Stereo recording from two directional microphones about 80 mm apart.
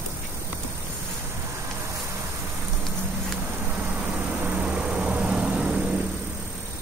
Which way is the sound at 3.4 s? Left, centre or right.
Right.